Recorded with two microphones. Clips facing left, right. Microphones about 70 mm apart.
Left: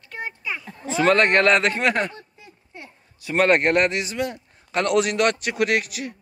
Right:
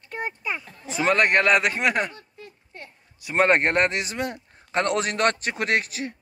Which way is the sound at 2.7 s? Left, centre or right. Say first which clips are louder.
Left 2 dB; centre.